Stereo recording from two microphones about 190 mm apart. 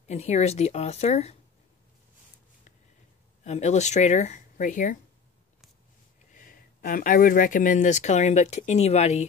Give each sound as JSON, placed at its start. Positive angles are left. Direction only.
{"t": 0.1, "sound": "speech", "side_deg": 35}
{"t": 3.4, "sound": "speech", "side_deg": 35}
{"t": 6.3, "sound": "speech", "side_deg": 45}